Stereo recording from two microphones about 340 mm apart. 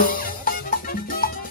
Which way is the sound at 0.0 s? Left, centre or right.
Left.